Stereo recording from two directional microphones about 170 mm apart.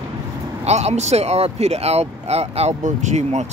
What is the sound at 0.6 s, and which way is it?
Speech, 40° right (ahead or behind).